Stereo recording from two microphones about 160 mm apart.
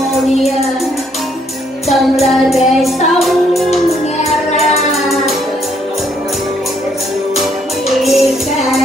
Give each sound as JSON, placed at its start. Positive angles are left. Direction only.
{"t": 1.9, "sound": "music", "side_deg": 0}
{"t": 3.7, "sound": "music", "side_deg": 40}
{"t": 4.6, "sound": "music", "side_deg": 0}
{"t": 8.0, "sound": "music", "side_deg": 0}